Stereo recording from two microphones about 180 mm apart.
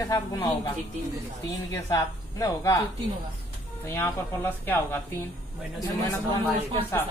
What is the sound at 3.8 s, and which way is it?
Speech, 15° left (ahead or behind).